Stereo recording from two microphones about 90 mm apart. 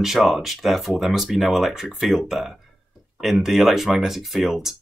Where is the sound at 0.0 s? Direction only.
Centre (ahead or behind).